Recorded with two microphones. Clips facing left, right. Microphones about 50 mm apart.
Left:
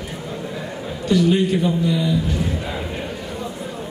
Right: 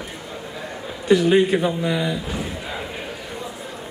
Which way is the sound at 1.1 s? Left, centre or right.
Right.